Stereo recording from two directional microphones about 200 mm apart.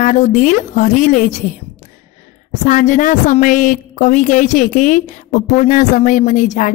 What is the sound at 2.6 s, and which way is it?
A woman's voice, 40° left (ahead or behind).